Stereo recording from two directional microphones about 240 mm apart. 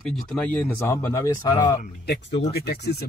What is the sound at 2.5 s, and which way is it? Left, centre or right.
Speech, left.